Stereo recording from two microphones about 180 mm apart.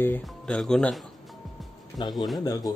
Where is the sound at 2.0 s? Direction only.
25° left (ahead or behind).